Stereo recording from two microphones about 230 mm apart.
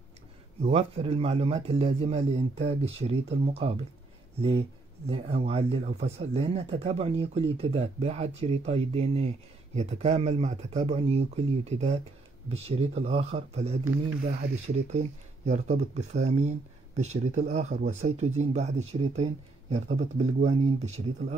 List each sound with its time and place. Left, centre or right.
0.6 s speech: right